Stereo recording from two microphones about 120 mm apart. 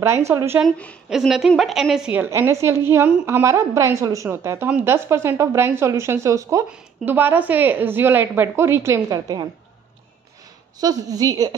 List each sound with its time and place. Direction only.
0.3 s speech: 20° right (ahead or behind)
1.1 s a woman's voice: 5° right (ahead or behind)
2.2 s speech: 20° right (ahead or behind)
6.7 s a woman's voice: 15° right (ahead or behind)
10.8 s a woman's voice: 30° right (ahead or behind)